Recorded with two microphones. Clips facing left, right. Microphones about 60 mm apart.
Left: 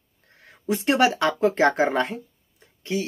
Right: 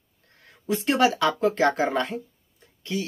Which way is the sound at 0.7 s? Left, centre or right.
Left.